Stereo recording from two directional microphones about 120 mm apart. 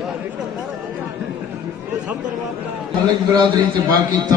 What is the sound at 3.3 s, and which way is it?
A man's voice, 40° right (ahead or behind).